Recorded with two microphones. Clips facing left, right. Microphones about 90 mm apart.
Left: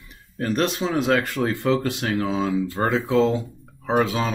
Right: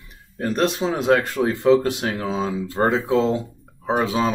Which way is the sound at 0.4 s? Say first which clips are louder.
Right 2 dB; 25° right (ahead or behind).